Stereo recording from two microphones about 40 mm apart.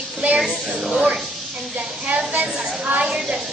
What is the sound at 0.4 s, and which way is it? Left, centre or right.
Speech, centre.